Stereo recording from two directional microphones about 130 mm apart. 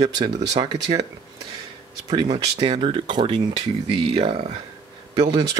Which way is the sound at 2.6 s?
45° right (ahead or behind).